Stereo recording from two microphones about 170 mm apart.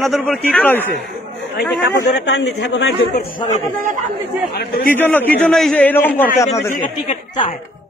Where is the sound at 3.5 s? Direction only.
50° right (ahead or behind).